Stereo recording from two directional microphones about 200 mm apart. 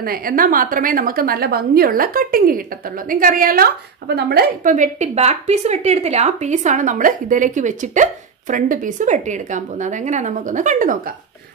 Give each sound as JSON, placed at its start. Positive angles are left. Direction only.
{"t": 0.0, "sound": "a woman's voice", "side_deg": -45}